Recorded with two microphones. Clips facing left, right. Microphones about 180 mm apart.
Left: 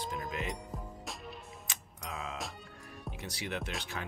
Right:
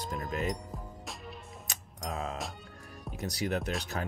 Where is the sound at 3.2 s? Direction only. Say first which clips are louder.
Right 7 dB; 40° right (ahead or behind).